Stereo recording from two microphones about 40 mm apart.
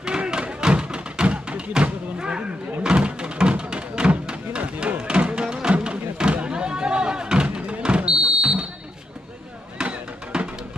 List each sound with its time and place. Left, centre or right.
0.0 s music: right
1.8 s a sound: right
9.8 s music: right